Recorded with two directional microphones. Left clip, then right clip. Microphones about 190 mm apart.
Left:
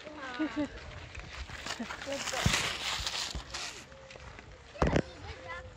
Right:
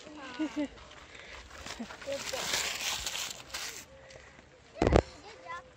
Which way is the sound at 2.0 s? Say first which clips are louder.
Left 1 dB; 35° right (ahead or behind).